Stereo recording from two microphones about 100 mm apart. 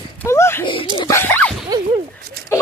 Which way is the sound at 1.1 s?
20° left (ahead or behind).